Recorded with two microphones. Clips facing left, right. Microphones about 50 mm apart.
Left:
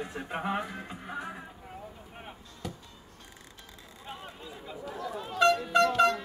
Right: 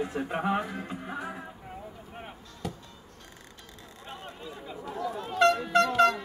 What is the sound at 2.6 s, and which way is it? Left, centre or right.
Music, centre.